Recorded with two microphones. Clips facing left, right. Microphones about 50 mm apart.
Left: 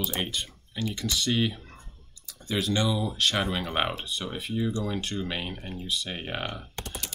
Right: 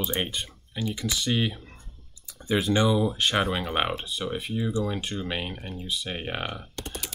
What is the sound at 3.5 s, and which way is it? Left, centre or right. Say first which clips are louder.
Speech: right 2 dB; centre.